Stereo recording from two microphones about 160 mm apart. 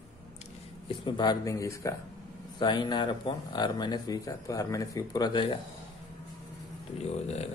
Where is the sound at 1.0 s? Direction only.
25° left (ahead or behind).